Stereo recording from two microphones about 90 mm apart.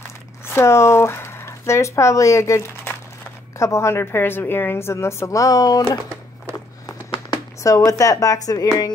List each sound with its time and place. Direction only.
0.5 s a woman's voice: 30° left (ahead or behind)
7.6 s a woman's voice: 40° left (ahead or behind)